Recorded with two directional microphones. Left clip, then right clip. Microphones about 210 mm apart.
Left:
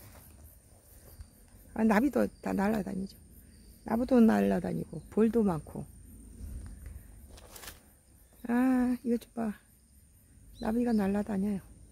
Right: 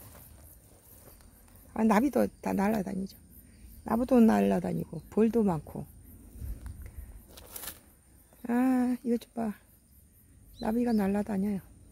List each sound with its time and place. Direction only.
1.7 s speech: 15° right (ahead or behind)
7.2 s a sound: 50° right (ahead or behind)
8.4 s speech: 5° right (ahead or behind)
10.6 s speech: 10° right (ahead or behind)